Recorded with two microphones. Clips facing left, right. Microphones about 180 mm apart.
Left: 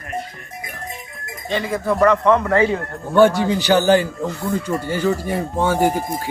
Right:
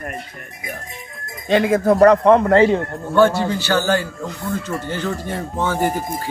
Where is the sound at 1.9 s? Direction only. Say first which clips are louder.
Right 3 dB; 35° right (ahead or behind).